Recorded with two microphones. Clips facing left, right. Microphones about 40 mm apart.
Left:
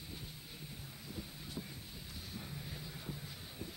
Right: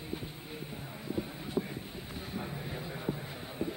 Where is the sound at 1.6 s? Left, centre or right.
Right.